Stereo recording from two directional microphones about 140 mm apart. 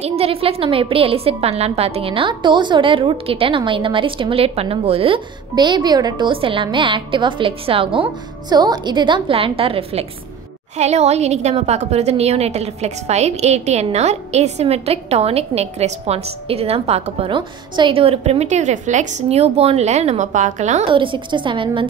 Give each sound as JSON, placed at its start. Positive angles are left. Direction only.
{"t": 0.0, "sound": "a woman's voice", "side_deg": -45}
{"t": 20.9, "sound": "a woman's voice", "side_deg": -35}